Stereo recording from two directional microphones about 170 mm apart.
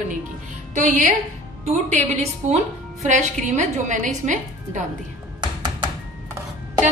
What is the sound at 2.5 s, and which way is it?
A woman's voice, 45° right (ahead or behind).